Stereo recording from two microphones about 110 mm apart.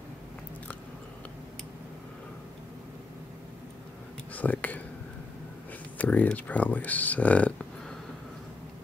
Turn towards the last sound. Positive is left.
turn(degrees=10)  # may be behind; listen again after turning